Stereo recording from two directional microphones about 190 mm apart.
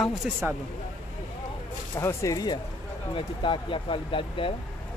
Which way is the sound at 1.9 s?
15° left (ahead or behind).